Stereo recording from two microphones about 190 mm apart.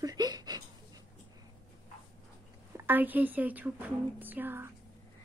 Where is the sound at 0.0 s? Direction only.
20° right (ahead or behind).